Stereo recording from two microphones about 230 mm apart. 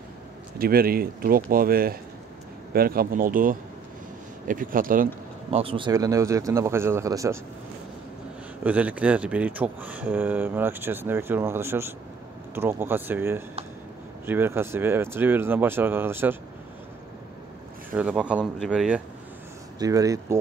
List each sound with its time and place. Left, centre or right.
0.6 s speech: right
5.6 s speech: right
8.6 s speech: centre
17.9 s speech: centre
19.8 s speech: centre